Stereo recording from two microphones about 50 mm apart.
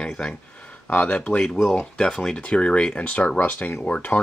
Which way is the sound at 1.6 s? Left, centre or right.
Centre.